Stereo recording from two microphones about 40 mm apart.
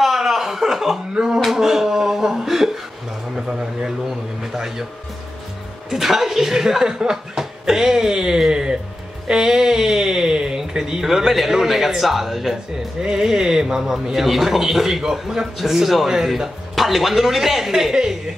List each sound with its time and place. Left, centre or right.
0.0 s chuckle: centre
1.1 s a man's voice: centre
1.4 s a man's voice: centre
5.9 s a man's voice: centre
13.0 s a man's voice: centre